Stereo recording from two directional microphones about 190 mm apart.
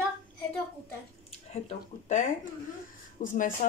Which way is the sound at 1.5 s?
35° left (ahead or behind).